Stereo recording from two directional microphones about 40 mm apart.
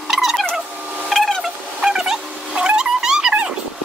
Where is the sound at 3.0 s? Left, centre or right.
Centre.